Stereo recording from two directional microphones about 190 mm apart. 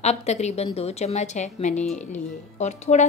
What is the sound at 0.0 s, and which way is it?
Speech, 35° left (ahead or behind).